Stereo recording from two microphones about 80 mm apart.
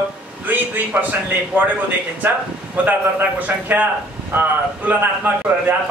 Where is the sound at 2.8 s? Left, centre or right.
Right.